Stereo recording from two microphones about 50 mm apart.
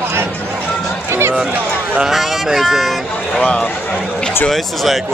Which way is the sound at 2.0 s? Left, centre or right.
Centre.